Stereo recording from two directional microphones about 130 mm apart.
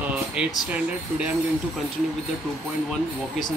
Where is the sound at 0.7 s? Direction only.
10° right (ahead or behind).